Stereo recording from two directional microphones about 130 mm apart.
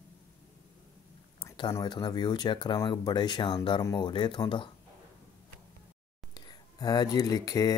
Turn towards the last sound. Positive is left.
turn(degrees=25)  # may be behind; listen again after turning